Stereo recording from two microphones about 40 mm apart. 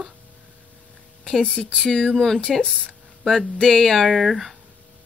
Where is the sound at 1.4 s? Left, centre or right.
Left.